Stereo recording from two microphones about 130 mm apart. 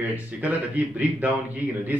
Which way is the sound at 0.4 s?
10° right (ahead or behind).